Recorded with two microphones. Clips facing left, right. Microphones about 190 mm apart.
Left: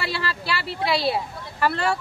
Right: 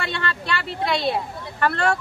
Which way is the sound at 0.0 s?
5° left (ahead or behind).